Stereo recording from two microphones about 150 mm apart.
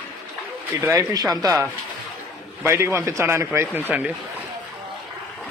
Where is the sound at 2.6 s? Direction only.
15° right (ahead or behind).